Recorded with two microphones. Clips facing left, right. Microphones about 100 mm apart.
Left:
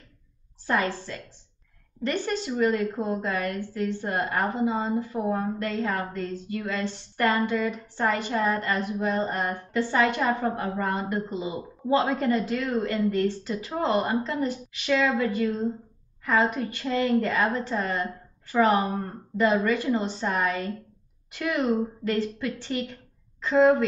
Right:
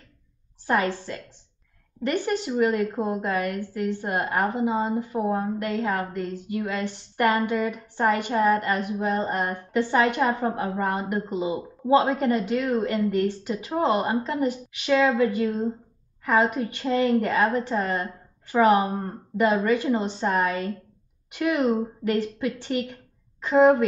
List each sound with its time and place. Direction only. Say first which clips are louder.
0.7 s a woman's voice: right 2 dB; 20° right (ahead or behind)